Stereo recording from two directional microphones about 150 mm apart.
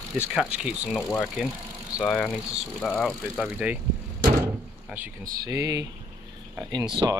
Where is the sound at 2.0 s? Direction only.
5° left (ahead or behind).